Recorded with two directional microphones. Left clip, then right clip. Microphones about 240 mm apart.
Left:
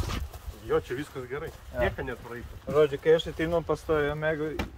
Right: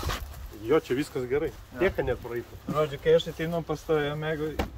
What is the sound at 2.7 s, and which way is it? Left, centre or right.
Speech, centre.